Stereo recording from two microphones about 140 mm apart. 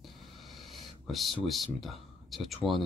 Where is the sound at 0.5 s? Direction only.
35° right (ahead or behind).